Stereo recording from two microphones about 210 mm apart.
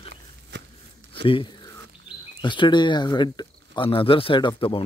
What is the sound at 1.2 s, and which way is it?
Speech, 25° left (ahead or behind).